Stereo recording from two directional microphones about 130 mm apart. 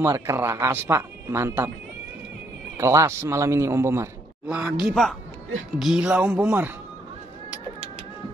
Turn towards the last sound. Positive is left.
turn(degrees=-15)  # may be behind; listen again after turning